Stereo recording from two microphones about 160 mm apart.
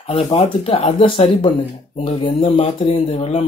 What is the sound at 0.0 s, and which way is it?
Speech, 40° left (ahead or behind).